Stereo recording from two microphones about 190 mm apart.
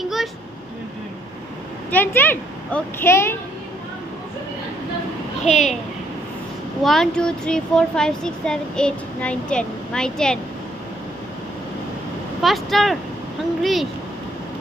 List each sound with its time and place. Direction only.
0.0 s a sound: centre (ahead or behind)
1.9 s a child's voice: 10° left (ahead or behind)
5.5 s a child's voice: 35° left (ahead or behind)
6.8 s speech: centre (ahead or behind)
12.4 s speech: centre (ahead or behind)